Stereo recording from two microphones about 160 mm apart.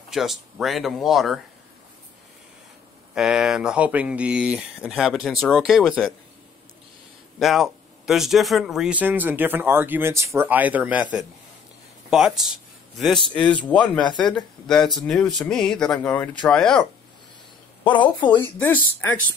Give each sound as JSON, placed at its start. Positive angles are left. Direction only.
{"t": 0.1, "sound": "speech", "side_deg": 0}
{"t": 3.2, "sound": "speech", "side_deg": -5}
{"t": 7.3, "sound": "speech", "side_deg": 0}
{"t": 17.8, "sound": "a woman's voice", "side_deg": 30}
{"t": 18.6, "sound": "speech", "side_deg": 10}